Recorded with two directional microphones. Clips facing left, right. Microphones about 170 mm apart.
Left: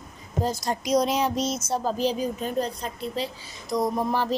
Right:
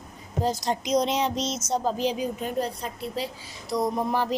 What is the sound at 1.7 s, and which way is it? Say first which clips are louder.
Speech: right 1 dB; 20° right (ahead or behind).